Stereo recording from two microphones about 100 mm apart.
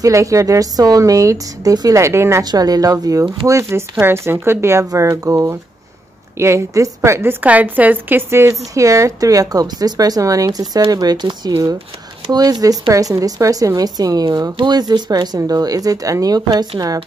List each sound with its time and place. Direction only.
0.0 s a woman's voice: 35° right (ahead or behind)
2.4 s a woman's voice: 40° right (ahead or behind)